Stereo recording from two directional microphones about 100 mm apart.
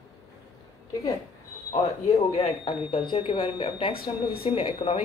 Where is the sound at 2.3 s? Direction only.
80° left.